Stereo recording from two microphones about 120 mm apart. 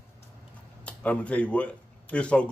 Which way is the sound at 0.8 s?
10° left (ahead or behind).